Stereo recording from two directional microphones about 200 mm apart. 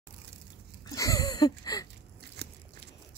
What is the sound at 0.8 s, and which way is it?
Wheeze, 15° left (ahead or behind).